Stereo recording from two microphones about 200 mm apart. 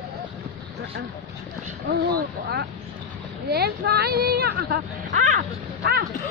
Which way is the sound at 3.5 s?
50° right (ahead or behind).